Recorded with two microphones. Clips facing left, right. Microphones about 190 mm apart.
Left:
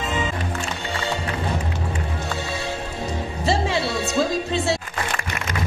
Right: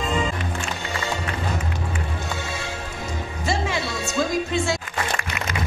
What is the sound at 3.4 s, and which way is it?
Music, 30° left (ahead or behind).